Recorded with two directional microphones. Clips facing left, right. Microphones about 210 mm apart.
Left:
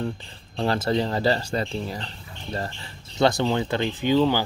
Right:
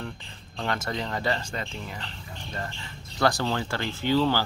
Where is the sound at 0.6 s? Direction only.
30° left (ahead or behind).